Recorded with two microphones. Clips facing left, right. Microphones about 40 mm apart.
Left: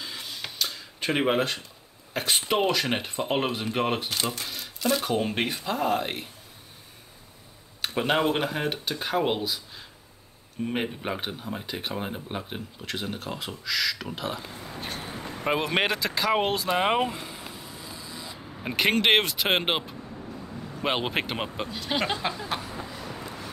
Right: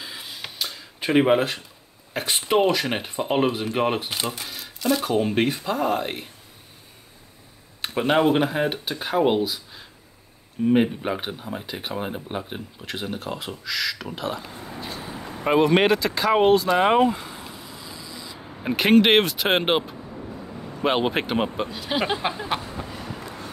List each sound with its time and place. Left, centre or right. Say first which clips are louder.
0.0 s a sound: right 1 dB; centre
2.1 s speech: right 4 dB; centre
7.9 s speech: right 5 dB; centre
14.8 s vehicle: right 1 dB; left
15.4 s speech: right 7 dB; centre
17.9 s spray: right 1 dB; left
18.6 s speech: right 6 dB; centre
20.1 s vehicle: right 3 dB; centre
20.8 s speech: right 5 dB; centre
22.3 s speech: right 4 dB; right
22.8 s train: right 2 dB; right